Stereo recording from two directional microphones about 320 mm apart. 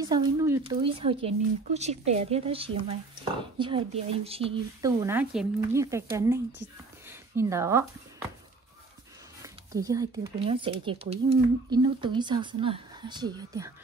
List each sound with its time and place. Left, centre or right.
0.0 s speech: centre
7.1 s a sound: centre
9.4 s speech: centre